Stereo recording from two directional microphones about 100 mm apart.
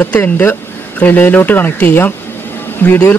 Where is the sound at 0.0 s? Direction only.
15° left (ahead or behind).